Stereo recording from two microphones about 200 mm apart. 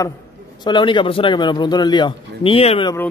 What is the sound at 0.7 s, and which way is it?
A man's voice, 25° left (ahead or behind).